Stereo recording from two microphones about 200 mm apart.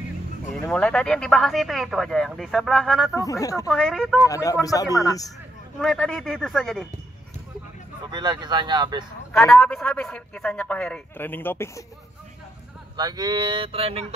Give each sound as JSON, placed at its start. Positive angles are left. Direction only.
{"t": 0.5, "sound": "speech", "side_deg": 5}
{"t": 3.2, "sound": "a man's voice", "side_deg": 15}
{"t": 3.7, "sound": "speech", "side_deg": 5}
{"t": 4.2, "sound": "a man's voice", "side_deg": 15}
{"t": 5.8, "sound": "speech", "side_deg": 5}
{"t": 8.0, "sound": "speech", "side_deg": -20}
{"t": 9.5, "sound": "speech", "side_deg": 0}
{"t": 12.9, "sound": "speech", "side_deg": -20}